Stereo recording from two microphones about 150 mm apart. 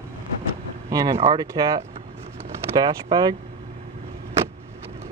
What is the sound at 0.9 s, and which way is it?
Speech, 25° right (ahead or behind).